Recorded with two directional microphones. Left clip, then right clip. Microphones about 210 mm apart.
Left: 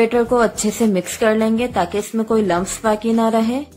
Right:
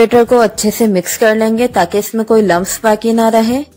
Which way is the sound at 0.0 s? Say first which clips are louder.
Right 7 dB; 30° right (ahead or behind).